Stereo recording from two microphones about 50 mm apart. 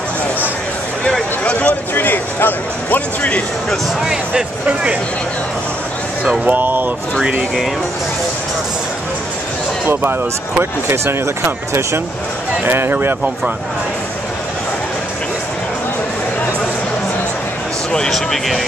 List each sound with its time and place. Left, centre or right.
1.4 s speech: left
2.0 s speech: left
4.0 s speech: centre
6.4 s speech: right
10.6 s speech: right
12.6 s speech: right
18.1 s speech: centre